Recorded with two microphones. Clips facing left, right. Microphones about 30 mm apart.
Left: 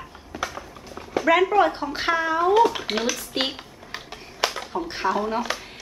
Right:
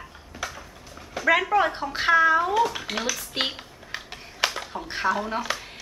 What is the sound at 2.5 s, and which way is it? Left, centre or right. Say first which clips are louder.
Speech: left 5 dB; centre.